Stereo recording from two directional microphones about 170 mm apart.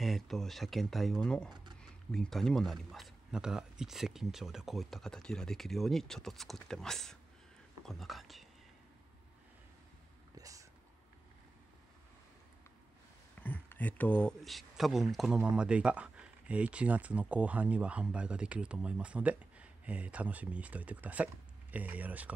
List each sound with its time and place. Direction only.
0.0 s speech: centre (ahead or behind)
1.5 s a sound: 25° right (ahead or behind)
1.8 s speech: centre (ahead or behind)
10.3 s whispering: 20° right (ahead or behind)
13.4 s speech: 10° left (ahead or behind); by 22.3 s 10° right (ahead or behind)